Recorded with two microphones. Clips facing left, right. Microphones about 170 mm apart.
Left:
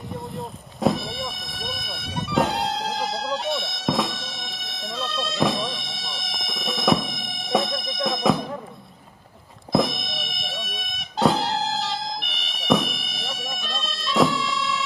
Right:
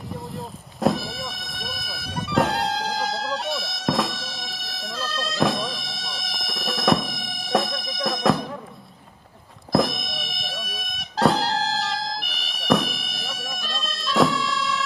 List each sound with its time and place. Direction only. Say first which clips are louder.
0.7 s music: even; centre (ahead or behind)
9.7 s music: even; centre (ahead or behind)